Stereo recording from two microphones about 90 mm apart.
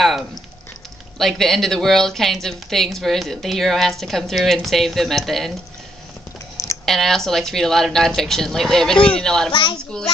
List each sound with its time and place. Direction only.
1.1 s a woman's voice: 5° left (ahead or behind)
6.9 s a woman's voice: 5° left (ahead or behind)
9.5 s a child's voice: 65° left (ahead or behind)